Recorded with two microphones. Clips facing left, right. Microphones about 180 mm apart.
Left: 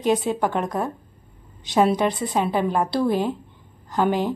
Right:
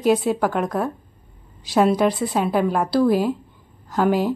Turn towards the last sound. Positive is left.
turn(degrees=-5)  # may be behind; listen again after turning